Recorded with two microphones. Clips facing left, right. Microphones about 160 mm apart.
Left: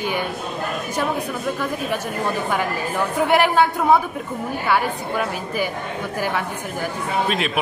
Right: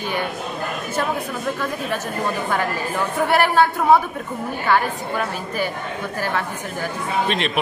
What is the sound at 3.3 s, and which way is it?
Speech, 15° left (ahead or behind).